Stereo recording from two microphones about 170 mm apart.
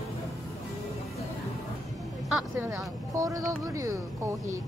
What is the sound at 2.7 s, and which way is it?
Speech, 20° right (ahead or behind).